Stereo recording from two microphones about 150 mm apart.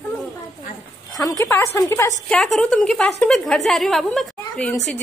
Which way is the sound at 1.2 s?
20° left (ahead or behind).